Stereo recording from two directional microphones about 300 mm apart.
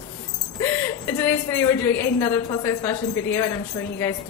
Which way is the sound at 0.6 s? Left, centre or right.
Centre.